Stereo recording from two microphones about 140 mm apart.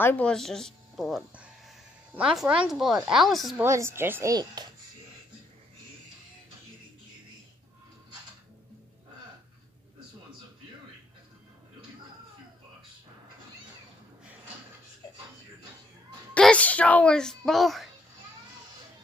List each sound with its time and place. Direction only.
0.0 s speech: 10° left (ahead or behind)
3.6 s speech: 20° right (ahead or behind)
16.3 s a child's voice: 10° left (ahead or behind)